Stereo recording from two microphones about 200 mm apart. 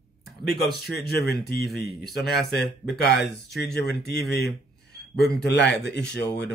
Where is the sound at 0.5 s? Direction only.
50° left (ahead or behind).